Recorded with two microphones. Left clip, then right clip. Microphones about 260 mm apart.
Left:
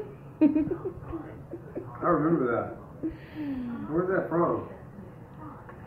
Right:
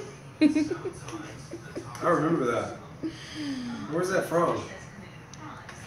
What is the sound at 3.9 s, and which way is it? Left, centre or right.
Speech, right.